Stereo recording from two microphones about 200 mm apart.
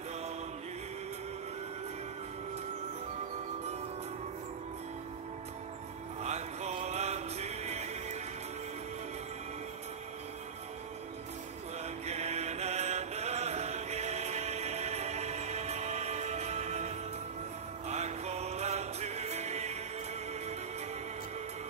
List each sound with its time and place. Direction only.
6.2 s music: 35° right (ahead or behind)
12.1 s mantra: 35° right (ahead or behind)
17.8 s music: 35° right (ahead or behind)